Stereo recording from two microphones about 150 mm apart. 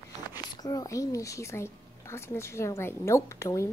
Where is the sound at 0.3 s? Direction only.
25° left (ahead or behind).